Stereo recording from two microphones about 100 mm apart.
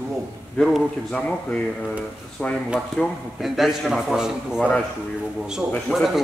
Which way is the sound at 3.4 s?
5° right (ahead or behind).